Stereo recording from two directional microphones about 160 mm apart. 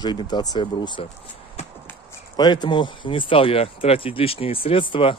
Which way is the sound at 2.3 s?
25° left (ahead or behind).